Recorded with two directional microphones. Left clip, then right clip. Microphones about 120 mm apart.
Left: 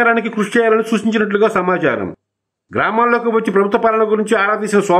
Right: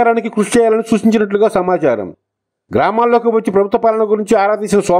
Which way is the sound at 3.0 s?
40° right (ahead or behind).